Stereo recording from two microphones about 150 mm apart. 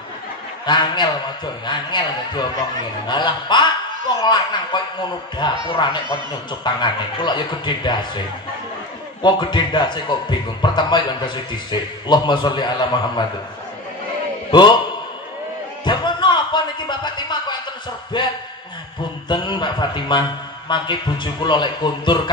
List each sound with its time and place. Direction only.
0.7 s a man's voice: 30° left (ahead or behind)
6.6 s a man's voice: 30° left (ahead or behind)
9.2 s a man's voice: 30° left (ahead or behind)
14.5 s a man's voice: 30° left (ahead or behind)
15.8 s a sound: 30° left (ahead or behind)
18.1 s a man's voice: 30° left (ahead or behind)